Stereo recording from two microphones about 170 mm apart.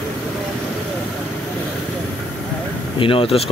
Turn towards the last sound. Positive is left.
turn(degrees=35)  # may be behind; listen again after turning